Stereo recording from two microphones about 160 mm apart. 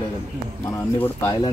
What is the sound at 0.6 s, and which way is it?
Speech, 15° left (ahead or behind).